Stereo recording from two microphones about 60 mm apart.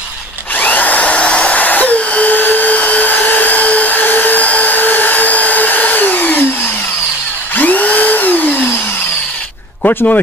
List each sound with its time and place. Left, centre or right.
0.6 s a sound: left
7.5 s drill: left
9.8 s speech: left